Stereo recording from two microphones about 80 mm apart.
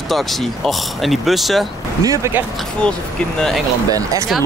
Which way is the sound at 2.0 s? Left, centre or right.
Right.